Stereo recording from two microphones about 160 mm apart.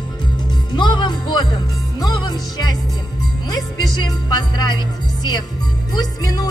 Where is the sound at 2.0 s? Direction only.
25° left (ahead or behind).